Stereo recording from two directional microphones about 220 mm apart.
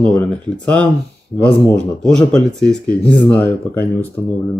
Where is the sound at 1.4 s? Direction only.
5° left (ahead or behind).